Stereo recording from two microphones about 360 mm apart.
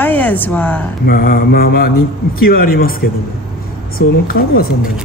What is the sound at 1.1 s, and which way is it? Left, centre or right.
Mantra, left.